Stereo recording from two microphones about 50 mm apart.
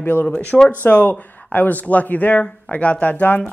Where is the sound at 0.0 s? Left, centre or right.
Left.